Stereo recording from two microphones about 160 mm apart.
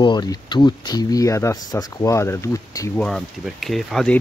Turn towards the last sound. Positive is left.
turn(degrees=0)  # may be behind; listen again after turning